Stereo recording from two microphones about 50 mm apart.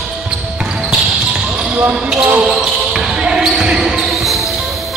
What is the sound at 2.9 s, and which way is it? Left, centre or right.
Basketball bounce, centre.